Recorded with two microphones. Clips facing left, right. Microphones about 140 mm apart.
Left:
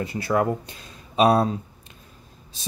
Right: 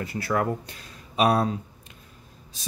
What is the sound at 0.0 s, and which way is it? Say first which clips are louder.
Speech: left 3 dB; 20° left (ahead or behind).